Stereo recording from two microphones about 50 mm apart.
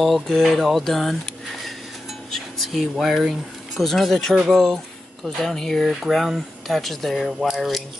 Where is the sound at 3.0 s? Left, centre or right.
Centre.